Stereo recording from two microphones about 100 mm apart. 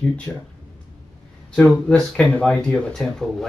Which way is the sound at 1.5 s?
10° left (ahead or behind).